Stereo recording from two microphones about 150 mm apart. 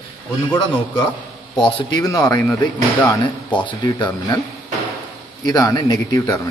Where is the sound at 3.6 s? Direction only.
30° left (ahead or behind).